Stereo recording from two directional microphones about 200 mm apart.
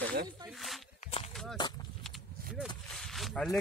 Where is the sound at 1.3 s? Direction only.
Centre (ahead or behind).